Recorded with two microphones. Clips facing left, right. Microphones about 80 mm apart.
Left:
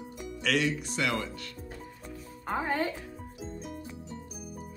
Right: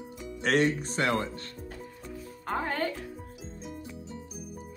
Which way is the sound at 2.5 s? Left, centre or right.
Centre.